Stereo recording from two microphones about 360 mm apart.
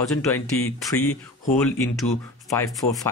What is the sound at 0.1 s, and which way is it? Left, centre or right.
Speech, centre.